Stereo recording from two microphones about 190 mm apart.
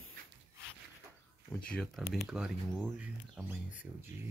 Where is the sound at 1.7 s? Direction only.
5° left (ahead or behind).